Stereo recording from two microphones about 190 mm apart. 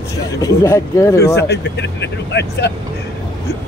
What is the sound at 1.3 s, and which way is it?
Speech, 65° left (ahead or behind).